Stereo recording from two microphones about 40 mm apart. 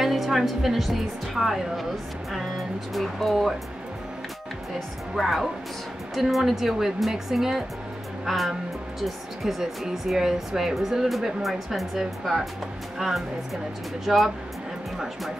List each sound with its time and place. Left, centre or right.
0.0 s a woman's voice: centre
2.9 s speech: centre
4.7 s speech: centre
14.0 s speech: centre